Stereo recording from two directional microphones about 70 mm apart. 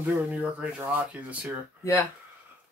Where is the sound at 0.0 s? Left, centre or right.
Right.